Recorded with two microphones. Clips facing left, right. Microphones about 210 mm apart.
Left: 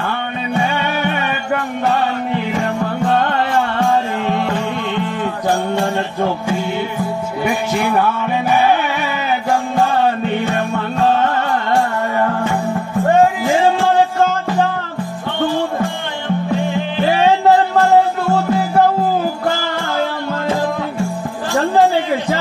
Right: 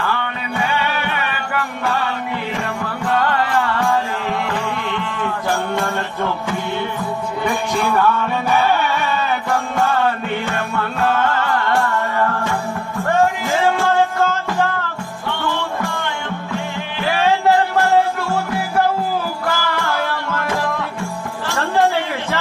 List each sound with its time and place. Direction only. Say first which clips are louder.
1.5 s music: left 5 dB; 20° left (ahead or behind)
3.1 s music: even; 25° left (ahead or behind)
9.8 s music: left 2 dB; 20° left (ahead or behind)
13.1 s music: left 4 dB; 15° left (ahead or behind)
17.0 s music: left 3 dB; 20° left (ahead or behind)